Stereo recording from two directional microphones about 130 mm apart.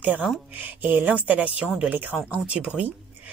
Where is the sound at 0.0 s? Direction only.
5° right (ahead or behind).